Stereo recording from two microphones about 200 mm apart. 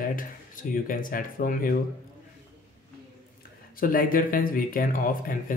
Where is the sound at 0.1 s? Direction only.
45° left (ahead or behind).